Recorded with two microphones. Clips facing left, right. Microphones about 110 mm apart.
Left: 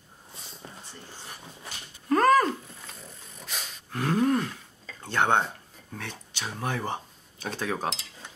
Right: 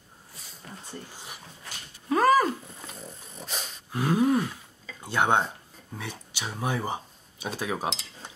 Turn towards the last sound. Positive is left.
turn(degrees=-10)  # may be behind; listen again after turning